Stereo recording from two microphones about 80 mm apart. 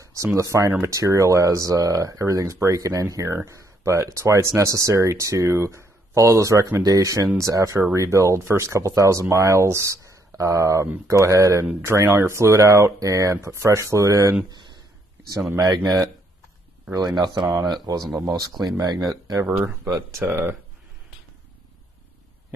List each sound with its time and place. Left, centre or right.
0.0 s a sound: right
0.4 s speech: right
15.6 s speech: right
17.6 s speech: right
18.1 s speech: right
18.8 s speech: right
20.2 s speech: right